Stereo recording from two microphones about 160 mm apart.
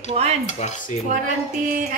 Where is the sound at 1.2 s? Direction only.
55° right (ahead or behind).